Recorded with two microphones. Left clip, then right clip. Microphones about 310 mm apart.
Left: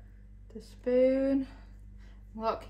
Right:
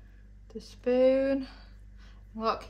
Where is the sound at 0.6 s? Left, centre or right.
Right.